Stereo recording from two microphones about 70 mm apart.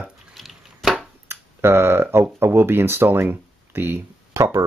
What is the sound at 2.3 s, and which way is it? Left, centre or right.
Speech, right.